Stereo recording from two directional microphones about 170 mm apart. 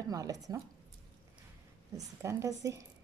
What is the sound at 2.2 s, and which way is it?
Speech, 15° right (ahead or behind).